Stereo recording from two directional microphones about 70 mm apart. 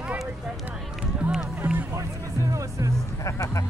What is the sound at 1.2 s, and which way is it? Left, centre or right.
Music, centre.